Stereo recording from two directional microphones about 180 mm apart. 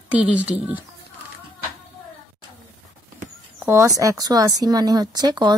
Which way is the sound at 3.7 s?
15° right (ahead or behind).